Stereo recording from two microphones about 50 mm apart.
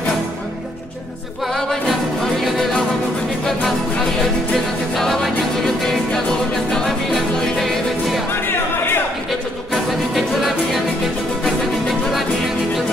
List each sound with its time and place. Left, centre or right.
1.5 s music: centre
4.9 s music: centre
7.3 s music: centre
8.3 s music: left
10.1 s music: centre